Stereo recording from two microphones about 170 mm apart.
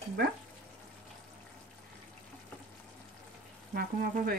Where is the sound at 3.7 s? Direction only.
60° right (ahead or behind).